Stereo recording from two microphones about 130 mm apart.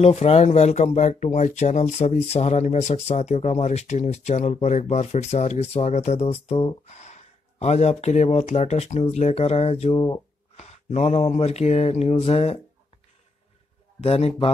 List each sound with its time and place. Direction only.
0.0 s speech: 50° left (ahead or behind)
10.5 s mantra: 55° left (ahead or behind)
14.0 s mantra: 50° left (ahead or behind)